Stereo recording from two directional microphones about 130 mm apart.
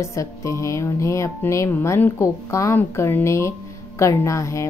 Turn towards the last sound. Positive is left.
turn(degrees=25)  # may be behind; listen again after turning